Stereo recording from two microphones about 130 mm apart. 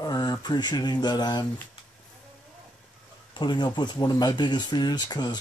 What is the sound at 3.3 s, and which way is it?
Speech, 35° left (ahead or behind).